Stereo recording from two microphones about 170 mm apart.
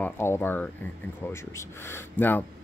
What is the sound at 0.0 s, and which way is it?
A man's voice, 15° left (ahead or behind).